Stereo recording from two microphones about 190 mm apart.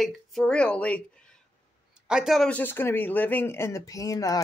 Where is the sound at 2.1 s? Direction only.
Centre (ahead or behind); by 4.4 s 20° left (ahead or behind).